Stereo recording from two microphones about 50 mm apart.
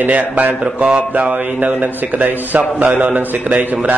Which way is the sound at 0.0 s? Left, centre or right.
Right.